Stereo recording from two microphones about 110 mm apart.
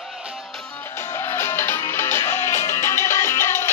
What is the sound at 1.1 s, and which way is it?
Music, 25° left (ahead or behind).